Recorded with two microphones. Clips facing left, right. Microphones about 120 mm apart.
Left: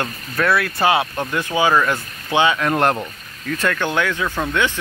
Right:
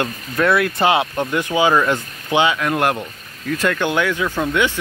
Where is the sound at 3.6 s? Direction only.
15° right (ahead or behind).